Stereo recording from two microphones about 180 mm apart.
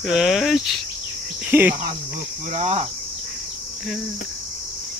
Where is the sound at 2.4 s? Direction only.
40° right (ahead or behind).